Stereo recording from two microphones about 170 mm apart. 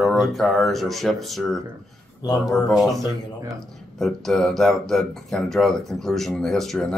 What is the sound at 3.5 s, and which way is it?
Speech, centre (ahead or behind).